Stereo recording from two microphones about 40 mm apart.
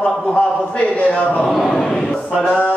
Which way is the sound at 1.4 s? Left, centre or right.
Centre.